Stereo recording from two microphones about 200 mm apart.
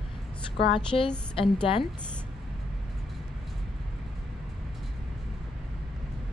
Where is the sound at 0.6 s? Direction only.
25° left (ahead or behind).